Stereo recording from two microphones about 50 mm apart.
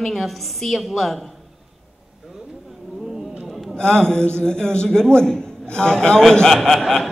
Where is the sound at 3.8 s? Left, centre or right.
Centre.